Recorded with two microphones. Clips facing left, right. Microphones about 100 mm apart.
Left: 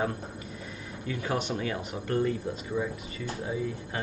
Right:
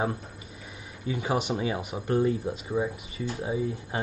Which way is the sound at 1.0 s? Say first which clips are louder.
Right 3 dB; 15° right (ahead or behind).